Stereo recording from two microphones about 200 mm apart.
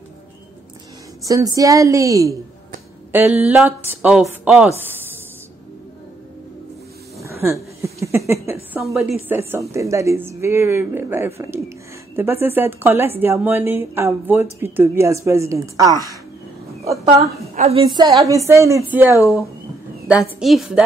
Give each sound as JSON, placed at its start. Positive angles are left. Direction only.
{"t": 1.2, "sound": "a woman's voice", "side_deg": -15}
{"t": 7.2, "sound": "a sound", "side_deg": -15}
{"t": 8.7, "sound": "a woman's voice", "side_deg": -5}
{"t": 17.6, "sound": "a woman's voice", "side_deg": -30}